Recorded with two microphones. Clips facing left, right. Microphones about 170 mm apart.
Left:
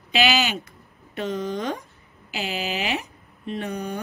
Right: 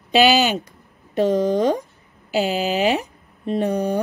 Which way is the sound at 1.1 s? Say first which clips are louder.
Right 10 dB; 35° right (ahead or behind).